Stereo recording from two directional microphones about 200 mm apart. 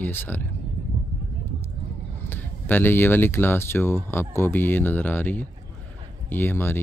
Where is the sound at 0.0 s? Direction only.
10° left (ahead or behind).